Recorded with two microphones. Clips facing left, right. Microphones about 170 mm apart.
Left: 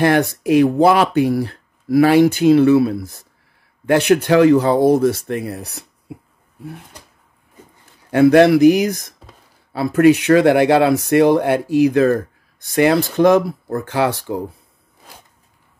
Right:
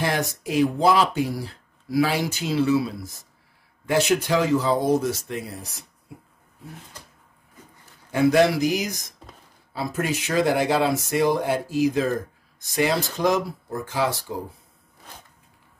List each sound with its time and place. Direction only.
0.0 s speech: 60° left (ahead or behind)
8.1 s speech: 65° left (ahead or behind)